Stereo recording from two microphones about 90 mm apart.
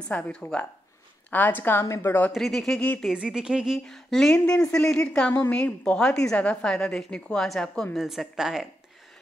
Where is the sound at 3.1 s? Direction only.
10° right (ahead or behind); by 5.3 s 10° left (ahead or behind).